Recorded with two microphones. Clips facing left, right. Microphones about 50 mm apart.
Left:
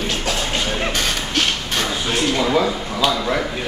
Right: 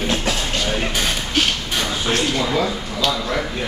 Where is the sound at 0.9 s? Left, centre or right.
Centre.